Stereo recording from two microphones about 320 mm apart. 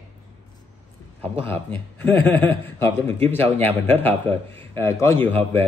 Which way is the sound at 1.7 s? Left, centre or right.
Centre.